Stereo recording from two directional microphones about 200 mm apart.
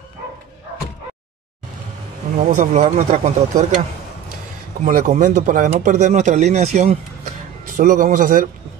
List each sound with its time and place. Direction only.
2.3 s speech: 40° right (ahead or behind)
4.8 s speech: 40° right (ahead or behind)